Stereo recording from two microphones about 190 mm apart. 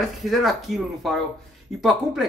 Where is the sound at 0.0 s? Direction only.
Centre (ahead or behind).